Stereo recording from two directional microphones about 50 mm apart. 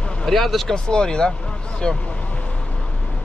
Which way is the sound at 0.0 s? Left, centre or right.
Centre.